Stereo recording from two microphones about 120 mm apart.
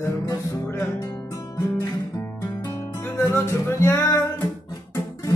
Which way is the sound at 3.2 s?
25° left (ahead or behind).